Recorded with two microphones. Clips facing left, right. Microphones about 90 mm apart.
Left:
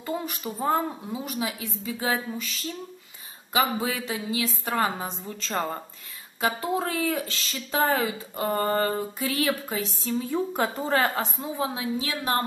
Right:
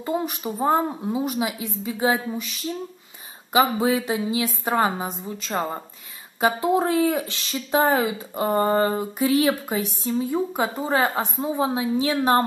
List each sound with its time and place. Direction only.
0.0 s speech: 20° right (ahead or behind)
5.0 s a woman's voice: 10° right (ahead or behind); by 12.4 s 30° right (ahead or behind)